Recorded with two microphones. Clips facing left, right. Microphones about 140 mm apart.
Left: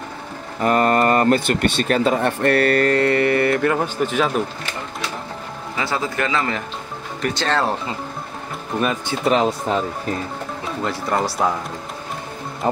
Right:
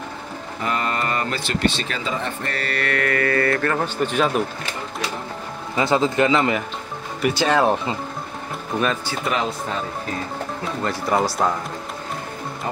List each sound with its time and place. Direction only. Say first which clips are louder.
0.6 s speech: left 8 dB; 45° left (ahead or behind)
2.8 s speech: left 6 dB; 30° left (ahead or behind); by 4.3 s 5° left (ahead or behind)
5.8 s speech: right 5 dB; 25° right (ahead or behind)
7.2 s speech: right 3 dB; 10° right (ahead or behind)
9.0 s speech: left 6 dB; 30° left (ahead or behind)
10.8 s speech: right 1 dB; centre (ahead or behind)